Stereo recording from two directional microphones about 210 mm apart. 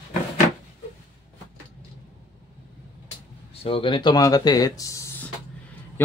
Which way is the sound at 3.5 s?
25° left (ahead or behind).